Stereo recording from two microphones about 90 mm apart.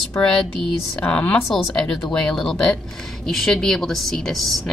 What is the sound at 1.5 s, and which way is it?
A woman's voice, 5° left (ahead or behind).